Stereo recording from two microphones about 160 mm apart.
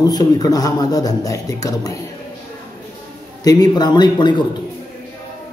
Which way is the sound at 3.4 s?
25° left (ahead or behind).